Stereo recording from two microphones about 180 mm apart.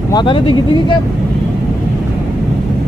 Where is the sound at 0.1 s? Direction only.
25° left (ahead or behind).